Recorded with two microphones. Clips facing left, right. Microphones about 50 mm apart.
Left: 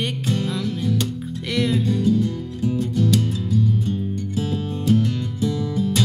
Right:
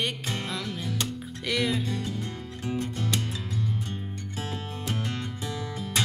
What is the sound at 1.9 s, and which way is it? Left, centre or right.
Music, right.